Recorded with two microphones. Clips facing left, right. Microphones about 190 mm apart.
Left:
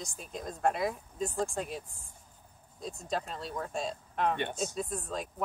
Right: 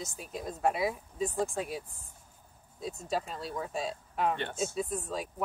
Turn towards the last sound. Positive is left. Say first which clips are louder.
# right 2 dB
turn(degrees=-5)  # may be behind; listen again after turning